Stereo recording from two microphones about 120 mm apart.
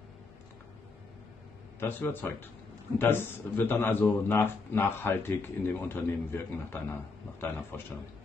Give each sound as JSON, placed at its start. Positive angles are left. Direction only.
{"t": 1.8, "sound": "a man's voice", "side_deg": 15}